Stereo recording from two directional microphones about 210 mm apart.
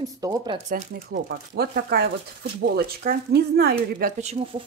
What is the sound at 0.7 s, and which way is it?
Speech, 40° right (ahead or behind).